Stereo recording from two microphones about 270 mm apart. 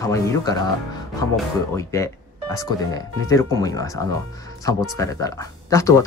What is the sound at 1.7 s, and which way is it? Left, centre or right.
Speech, centre.